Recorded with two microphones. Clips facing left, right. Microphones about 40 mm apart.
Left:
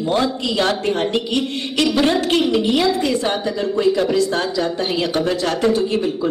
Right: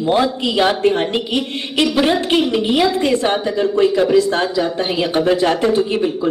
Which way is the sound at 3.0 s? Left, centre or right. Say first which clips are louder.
Right 3 dB; right.